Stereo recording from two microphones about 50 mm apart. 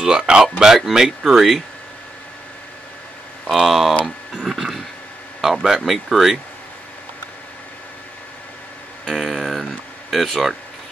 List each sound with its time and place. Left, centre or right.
0.0 s speech: centre
3.4 s speech: centre
4.0 s a sound: centre
5.4 s speech: centre
9.0 s music: centre